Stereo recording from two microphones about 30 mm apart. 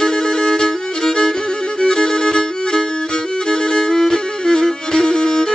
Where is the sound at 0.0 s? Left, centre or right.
Left.